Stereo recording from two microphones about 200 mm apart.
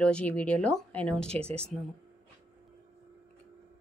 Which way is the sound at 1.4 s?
30° right (ahead or behind).